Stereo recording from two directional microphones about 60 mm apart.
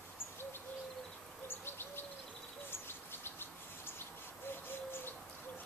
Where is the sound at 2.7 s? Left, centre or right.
Left.